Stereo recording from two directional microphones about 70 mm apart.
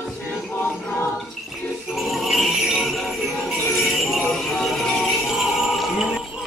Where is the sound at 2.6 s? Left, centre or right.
Centre.